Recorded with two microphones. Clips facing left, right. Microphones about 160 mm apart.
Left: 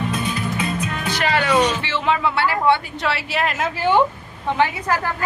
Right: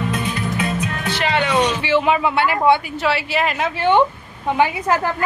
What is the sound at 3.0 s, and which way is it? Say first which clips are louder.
Speech: right 3 dB; centre (ahead or behind).